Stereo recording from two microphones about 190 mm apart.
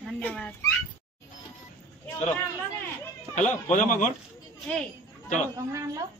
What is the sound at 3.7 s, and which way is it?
Speech, 40° left (ahead or behind).